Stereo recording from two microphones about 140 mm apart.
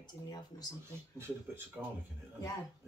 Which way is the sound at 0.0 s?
30° left (ahead or behind).